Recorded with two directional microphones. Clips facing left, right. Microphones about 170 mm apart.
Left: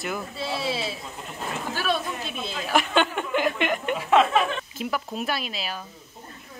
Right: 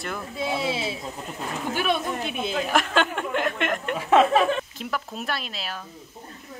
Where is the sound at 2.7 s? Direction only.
Centre (ahead or behind).